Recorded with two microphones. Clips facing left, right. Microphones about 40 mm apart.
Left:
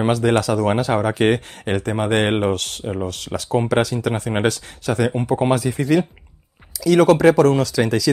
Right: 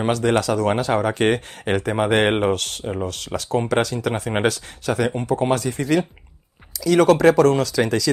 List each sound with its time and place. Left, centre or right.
0.0 s speech: centre